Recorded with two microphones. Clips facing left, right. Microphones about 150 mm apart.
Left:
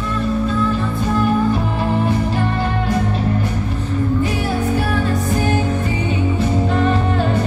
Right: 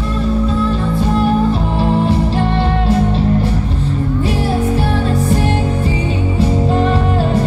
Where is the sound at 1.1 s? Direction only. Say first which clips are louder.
Right 1 dB; 30° right (ahead or behind).